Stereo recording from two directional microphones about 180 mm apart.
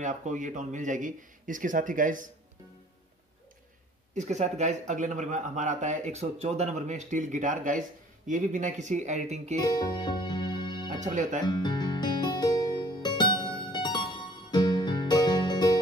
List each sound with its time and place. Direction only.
0.0 s speech: 45° right (ahead or behind)
4.1 s speech: 40° right (ahead or behind)
9.6 s speech: 20° left (ahead or behind)
11.4 s music: 25° left (ahead or behind)